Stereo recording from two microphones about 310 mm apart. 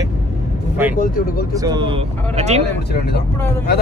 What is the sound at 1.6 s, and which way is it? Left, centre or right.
Speech, centre.